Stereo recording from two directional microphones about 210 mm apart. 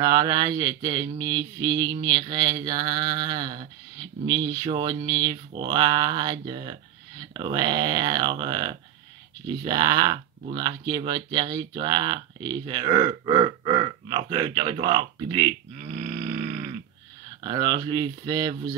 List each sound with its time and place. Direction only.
0.0 s speech: 20° right (ahead or behind)